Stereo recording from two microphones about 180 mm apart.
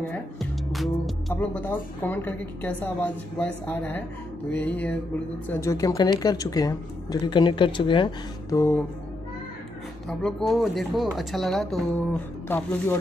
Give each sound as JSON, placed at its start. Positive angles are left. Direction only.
{"t": 0.1, "sound": "music", "side_deg": 0}
{"t": 1.3, "sound": "a woman's voice", "side_deg": 10}
{"t": 8.5, "sound": "a woman's voice", "side_deg": 15}
{"t": 10.0, "sound": "speech", "side_deg": 0}